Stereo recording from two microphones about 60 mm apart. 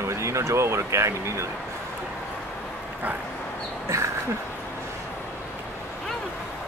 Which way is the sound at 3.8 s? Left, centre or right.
Right.